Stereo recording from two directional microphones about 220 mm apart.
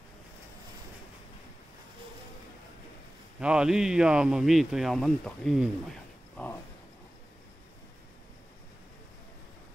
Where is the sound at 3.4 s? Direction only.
5° right (ahead or behind).